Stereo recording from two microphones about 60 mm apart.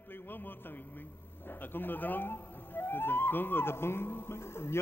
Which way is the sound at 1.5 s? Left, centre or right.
Left.